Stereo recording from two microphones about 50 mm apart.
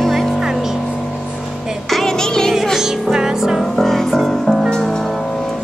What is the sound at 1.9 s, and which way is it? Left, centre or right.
Music, centre.